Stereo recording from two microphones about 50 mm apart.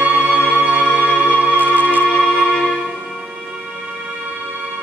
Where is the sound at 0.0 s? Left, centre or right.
Right.